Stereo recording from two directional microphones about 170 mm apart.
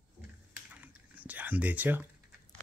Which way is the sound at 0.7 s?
10° right (ahead or behind).